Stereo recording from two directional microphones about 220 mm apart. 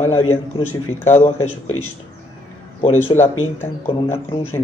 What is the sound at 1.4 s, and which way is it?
Speech, 75° left (ahead or behind).